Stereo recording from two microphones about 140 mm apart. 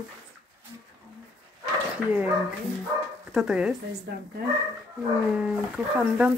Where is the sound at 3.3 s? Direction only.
5° right (ahead or behind).